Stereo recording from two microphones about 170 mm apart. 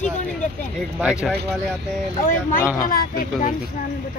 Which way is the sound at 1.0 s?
Centre (ahead or behind).